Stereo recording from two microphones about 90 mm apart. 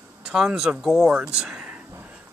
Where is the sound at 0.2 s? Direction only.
5° right (ahead or behind).